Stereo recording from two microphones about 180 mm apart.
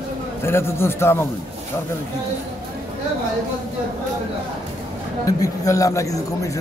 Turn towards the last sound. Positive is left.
turn(degrees=20)  # may be behind; listen again after turning